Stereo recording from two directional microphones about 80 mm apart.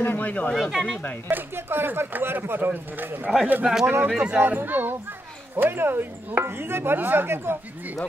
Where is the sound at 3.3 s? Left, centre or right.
Centre.